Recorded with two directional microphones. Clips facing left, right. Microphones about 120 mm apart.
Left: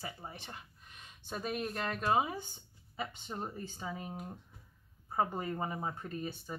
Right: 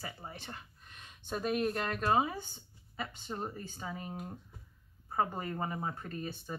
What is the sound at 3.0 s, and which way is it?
Speech, centre (ahead or behind).